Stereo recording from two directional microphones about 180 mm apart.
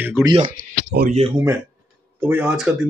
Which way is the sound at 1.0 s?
35° right (ahead or behind).